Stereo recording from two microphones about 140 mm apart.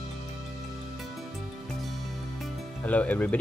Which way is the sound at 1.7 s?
Centre (ahead or behind).